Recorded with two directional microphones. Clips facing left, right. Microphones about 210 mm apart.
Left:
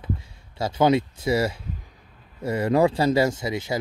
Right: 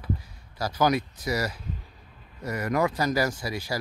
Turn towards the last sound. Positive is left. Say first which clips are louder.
# left 5 dB
turn(degrees=25)  # may be behind; listen again after turning